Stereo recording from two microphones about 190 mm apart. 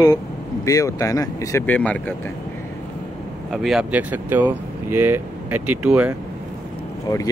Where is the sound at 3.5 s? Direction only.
Centre (ahead or behind).